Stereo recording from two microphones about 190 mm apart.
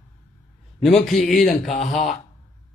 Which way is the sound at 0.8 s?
Centre (ahead or behind).